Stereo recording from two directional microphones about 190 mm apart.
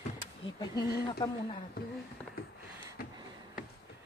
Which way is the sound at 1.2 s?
20° left (ahead or behind).